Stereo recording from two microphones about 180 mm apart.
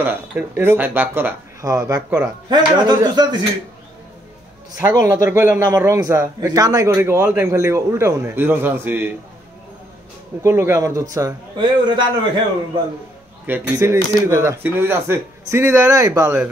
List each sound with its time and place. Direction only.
0.0 s a man's voice: 10° right (ahead or behind)
5.0 s a man's voice: 15° right (ahead or behind)
10.4 s a man's voice: 15° right (ahead or behind)
13.5 s a man's voice: 15° right (ahead or behind)